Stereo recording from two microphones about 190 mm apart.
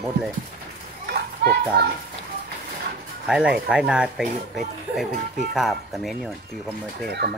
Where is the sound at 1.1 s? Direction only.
60° right (ahead or behind).